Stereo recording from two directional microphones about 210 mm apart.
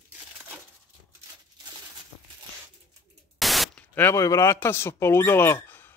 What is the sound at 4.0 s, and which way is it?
Speech, 15° left (ahead or behind).